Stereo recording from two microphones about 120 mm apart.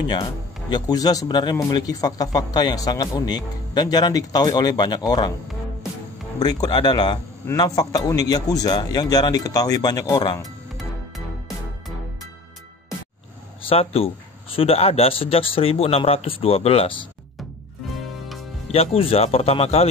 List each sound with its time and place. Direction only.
0.1 s speech: 35° left (ahead or behind)
6.4 s speech: 35° left (ahead or behind)
10.8 s music: centre (ahead or behind)
13.7 s a man's voice: 55° left (ahead or behind)
18.7 s a man's voice: 55° left (ahead or behind)